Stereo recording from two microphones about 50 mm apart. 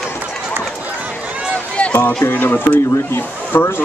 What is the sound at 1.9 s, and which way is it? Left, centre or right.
Speech, left.